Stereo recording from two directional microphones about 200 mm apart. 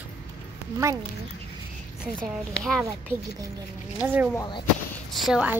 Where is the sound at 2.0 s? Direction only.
Centre (ahead or behind).